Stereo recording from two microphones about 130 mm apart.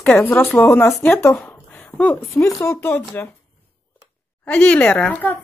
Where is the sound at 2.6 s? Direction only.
20° left (ahead or behind).